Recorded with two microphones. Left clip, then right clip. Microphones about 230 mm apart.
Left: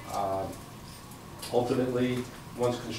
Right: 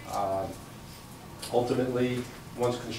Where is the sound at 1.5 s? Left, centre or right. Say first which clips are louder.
Even; centre.